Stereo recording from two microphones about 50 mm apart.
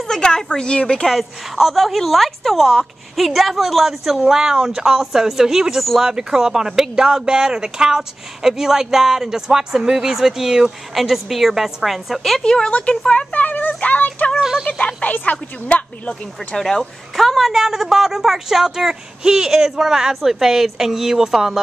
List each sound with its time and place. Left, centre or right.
0.0 s a woman's voice: centre
1.0 s a woman's voice: centre; by 16.2 s left
16.5 s speech: centre